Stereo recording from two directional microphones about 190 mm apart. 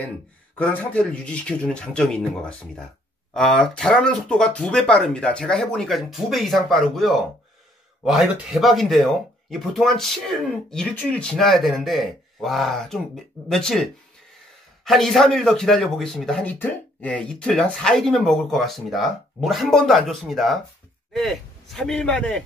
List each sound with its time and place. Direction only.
0.6 s speech: 5° left (ahead or behind)
14.9 s a man's voice: centre (ahead or behind)